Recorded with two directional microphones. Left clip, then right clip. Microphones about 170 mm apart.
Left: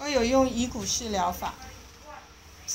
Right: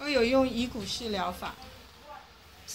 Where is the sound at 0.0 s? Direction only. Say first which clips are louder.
Left 2 dB; 5° right (ahead or behind).